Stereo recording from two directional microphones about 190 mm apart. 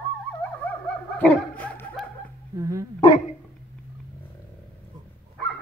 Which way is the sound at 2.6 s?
15° right (ahead or behind).